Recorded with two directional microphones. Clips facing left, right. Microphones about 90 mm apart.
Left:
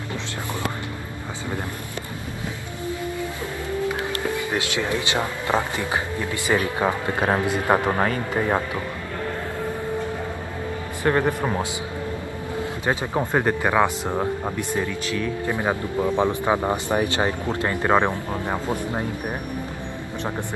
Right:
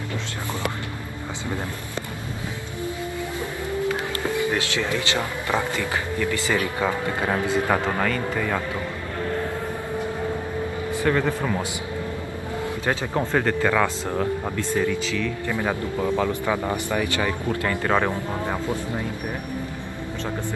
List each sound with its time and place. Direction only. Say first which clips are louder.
0.1 s speech: left 2 dB; 20° left (ahead or behind)
3.9 s speech: even; 20° left (ahead or behind)
11.1 s speech: left 2 dB; 25° left (ahead or behind)
12.8 s speech: left 1 dB; 15° left (ahead or behind)